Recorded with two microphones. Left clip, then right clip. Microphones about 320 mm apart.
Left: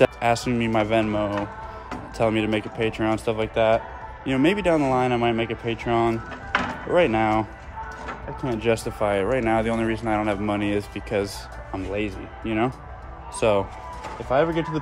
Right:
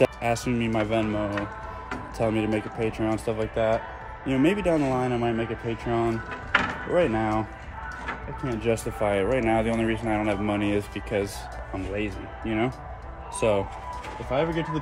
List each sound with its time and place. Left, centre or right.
0.0 s speech: centre
8.5 s speech: centre
14.3 s speech: centre